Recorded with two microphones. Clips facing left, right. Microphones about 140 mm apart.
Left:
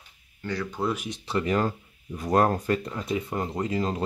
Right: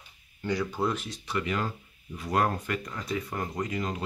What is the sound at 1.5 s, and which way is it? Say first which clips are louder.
Speech: left 6 dB; 45° left (ahead or behind).